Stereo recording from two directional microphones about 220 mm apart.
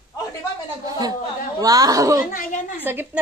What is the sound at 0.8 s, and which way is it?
A woman's voice, 15° right (ahead or behind).